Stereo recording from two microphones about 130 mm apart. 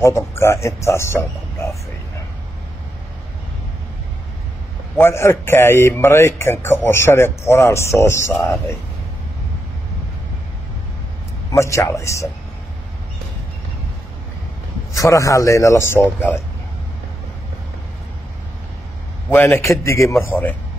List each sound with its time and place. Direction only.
0.0 s a man's voice: 20° left (ahead or behind)
4.9 s a man's voice: 20° left (ahead or behind)
11.5 s a man's voice: 25° left (ahead or behind)
14.9 s a man's voice: 25° left (ahead or behind)
19.3 s a man's voice: 15° left (ahead or behind)